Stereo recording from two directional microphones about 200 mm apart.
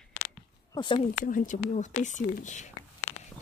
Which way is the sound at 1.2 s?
40° left (ahead or behind).